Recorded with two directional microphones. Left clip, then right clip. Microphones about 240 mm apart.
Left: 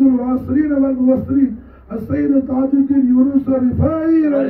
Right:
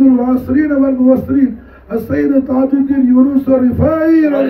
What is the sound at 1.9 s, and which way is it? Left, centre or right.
Speech, right.